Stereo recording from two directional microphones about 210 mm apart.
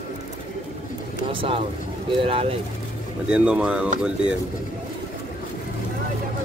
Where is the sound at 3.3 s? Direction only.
5° right (ahead or behind).